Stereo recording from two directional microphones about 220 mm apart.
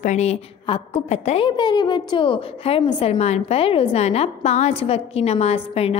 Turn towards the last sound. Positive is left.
turn(degrees=30)  # may be behind; listen again after turning